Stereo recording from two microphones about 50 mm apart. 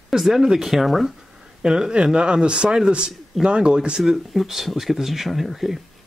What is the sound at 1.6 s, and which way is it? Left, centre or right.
Speech, centre.